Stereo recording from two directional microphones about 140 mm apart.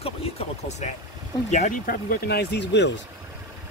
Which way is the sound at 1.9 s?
90° left.